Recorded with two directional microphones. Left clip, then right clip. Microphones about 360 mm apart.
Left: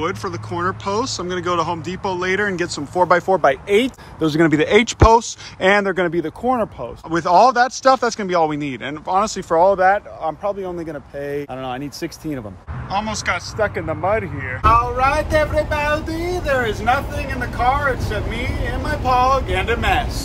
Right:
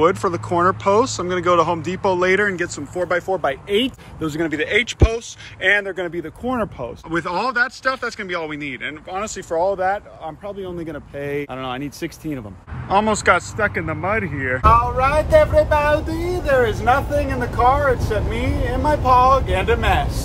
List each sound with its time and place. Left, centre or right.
0.0 s speech: centre
3.6 s speech: centre
4.3 s speech: left
6.4 s speech: centre; by 10.3 s left
10.4 s speech: centre